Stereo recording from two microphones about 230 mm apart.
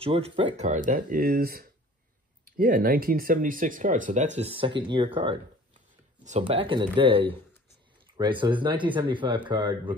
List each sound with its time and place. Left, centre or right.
0.0 s speech: right